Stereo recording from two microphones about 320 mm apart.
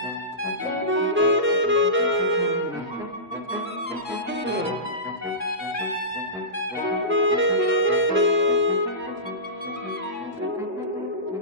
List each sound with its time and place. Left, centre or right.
0.8 s saxophone: right
7.1 s saxophone: right